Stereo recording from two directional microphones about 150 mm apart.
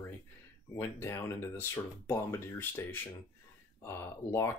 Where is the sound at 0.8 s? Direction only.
20° left (ahead or behind).